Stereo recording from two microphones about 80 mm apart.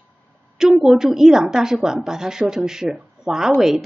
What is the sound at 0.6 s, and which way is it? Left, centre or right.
A woman's voice, centre.